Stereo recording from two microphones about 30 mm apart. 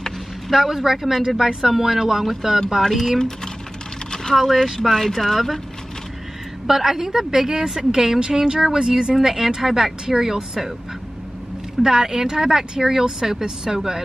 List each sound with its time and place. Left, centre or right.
0.6 s speech: centre
2.9 s speech: centre
4.1 s a sound: centre
4.4 s speech: centre
6.7 s a woman's voice: centre
11.8 s a woman's voice: right